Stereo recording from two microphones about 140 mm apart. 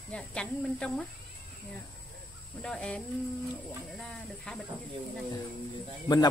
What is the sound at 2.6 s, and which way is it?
A woman's voice, 5° left (ahead or behind).